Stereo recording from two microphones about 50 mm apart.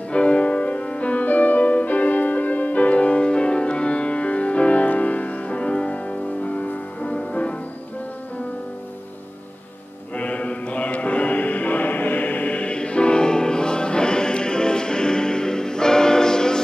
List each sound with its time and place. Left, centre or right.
0.1 s music: left
10.1 s music: left